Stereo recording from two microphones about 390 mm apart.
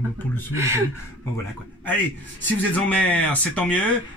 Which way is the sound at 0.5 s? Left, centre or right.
Centre.